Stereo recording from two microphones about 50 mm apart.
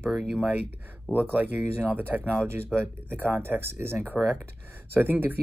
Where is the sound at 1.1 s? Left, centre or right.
Right.